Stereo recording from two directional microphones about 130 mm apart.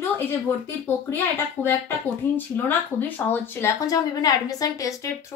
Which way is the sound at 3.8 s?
30° left (ahead or behind).